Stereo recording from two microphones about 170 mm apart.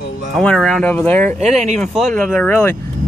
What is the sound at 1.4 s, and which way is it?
Speech, 40° right (ahead or behind).